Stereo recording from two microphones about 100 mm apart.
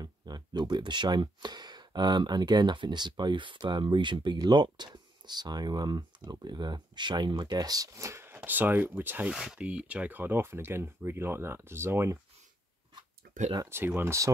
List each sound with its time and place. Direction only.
0.0 s speech: 45° right (ahead or behind); by 9.3 s 20° right (ahead or behind)
9.3 s speech: 5° right (ahead or behind); by 12.2 s 25° right (ahead or behind)
13.7 s speech: 20° right (ahead or behind)